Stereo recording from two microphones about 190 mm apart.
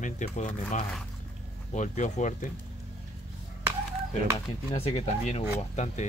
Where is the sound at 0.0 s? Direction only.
40° left (ahead or behind).